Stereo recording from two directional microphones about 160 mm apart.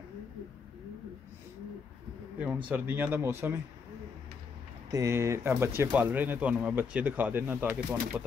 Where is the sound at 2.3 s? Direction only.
10° right (ahead or behind).